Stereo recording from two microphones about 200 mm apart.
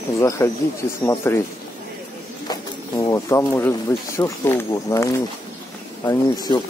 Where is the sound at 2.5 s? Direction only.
15° left (ahead or behind).